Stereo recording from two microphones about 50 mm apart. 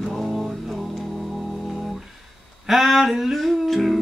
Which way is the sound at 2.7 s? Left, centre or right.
Centre.